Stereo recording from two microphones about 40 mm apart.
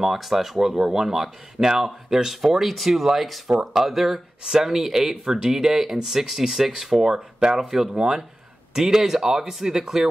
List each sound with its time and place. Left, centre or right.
0.0 s speech: centre